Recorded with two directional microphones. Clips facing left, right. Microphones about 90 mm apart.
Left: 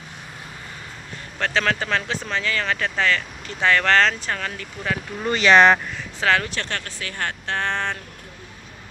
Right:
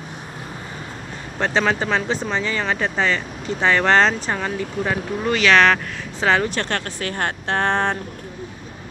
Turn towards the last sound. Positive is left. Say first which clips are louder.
# right 5 dB
turn(degrees=-45)  # may be behind; listen again after turning